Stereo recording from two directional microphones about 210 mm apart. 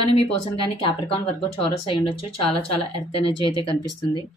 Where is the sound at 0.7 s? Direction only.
25° left (ahead or behind).